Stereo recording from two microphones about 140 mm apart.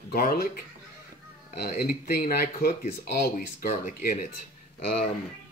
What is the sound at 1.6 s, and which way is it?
Speech, 90° left.